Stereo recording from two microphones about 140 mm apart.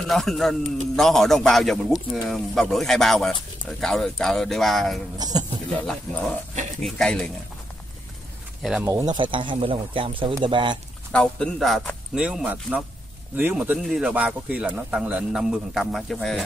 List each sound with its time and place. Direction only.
0.1 s a man's voice: centre (ahead or behind)
8.8 s speech: 20° right (ahead or behind)
9.1 s speech: 35° right (ahead or behind)
11.1 s a man's voice: 5° left (ahead or behind)